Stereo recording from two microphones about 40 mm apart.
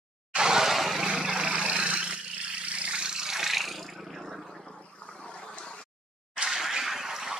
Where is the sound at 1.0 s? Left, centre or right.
Centre.